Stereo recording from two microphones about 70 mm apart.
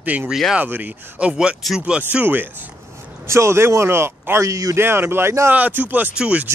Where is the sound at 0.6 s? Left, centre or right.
Right.